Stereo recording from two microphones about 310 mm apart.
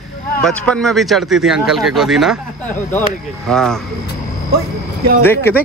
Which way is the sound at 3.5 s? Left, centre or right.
Centre.